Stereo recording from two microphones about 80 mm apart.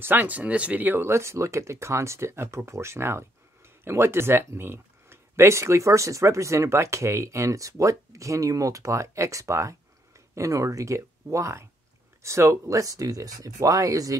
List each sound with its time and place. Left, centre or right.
0.0 s speech: right